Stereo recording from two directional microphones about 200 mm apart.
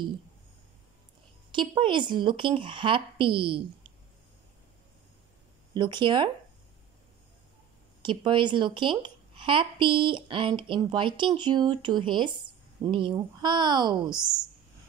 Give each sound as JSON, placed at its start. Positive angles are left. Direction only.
{"t": 1.5, "sound": "a woman's voice", "side_deg": -25}
{"t": 5.8, "sound": "a woman's voice", "side_deg": -25}
{"t": 8.0, "sound": "a woman's voice", "side_deg": -25}